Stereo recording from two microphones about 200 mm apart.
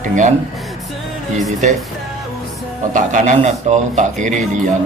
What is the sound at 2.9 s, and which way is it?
A man's voice, 40° right (ahead or behind).